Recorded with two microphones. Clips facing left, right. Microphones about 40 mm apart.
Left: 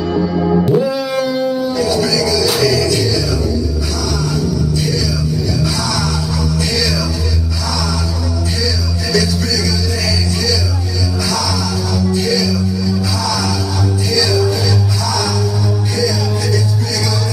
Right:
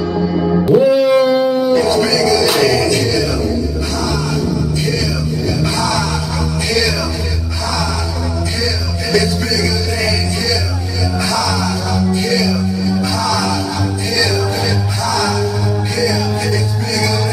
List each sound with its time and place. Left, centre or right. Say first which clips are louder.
0.7 s music: right 6 dB; right
9.1 s music: right 1 dB; right